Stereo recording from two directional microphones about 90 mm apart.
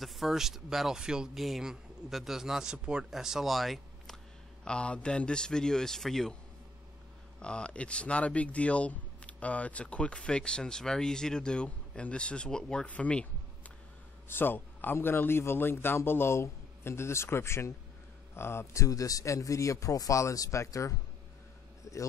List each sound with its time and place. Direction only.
0.0 s speech: centre (ahead or behind)
4.6 s speech: 10° left (ahead or behind)
7.3 s speech: 10° left (ahead or behind)
14.3 s a man's voice: 25° left (ahead or behind)